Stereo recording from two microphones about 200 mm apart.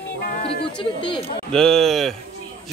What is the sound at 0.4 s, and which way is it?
Speech, 25° left (ahead or behind).